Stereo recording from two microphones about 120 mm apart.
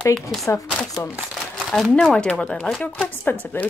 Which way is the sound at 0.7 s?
5° left (ahead or behind).